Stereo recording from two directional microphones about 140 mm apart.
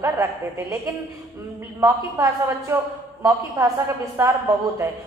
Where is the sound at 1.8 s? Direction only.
20° right (ahead or behind).